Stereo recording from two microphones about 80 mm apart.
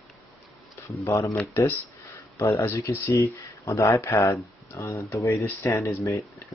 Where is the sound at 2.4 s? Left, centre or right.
Left.